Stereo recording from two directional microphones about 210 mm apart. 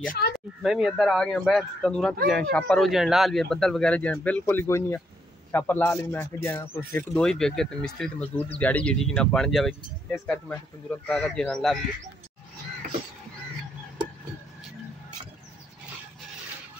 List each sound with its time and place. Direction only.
0.2 s speech: 50° left (ahead or behind)
0.6 s speech: centre (ahead or behind)